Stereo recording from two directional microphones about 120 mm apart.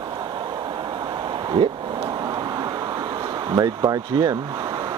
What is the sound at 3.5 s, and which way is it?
Speech, 30° right (ahead or behind).